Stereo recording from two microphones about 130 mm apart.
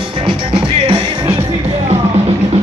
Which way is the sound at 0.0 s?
45° right (ahead or behind).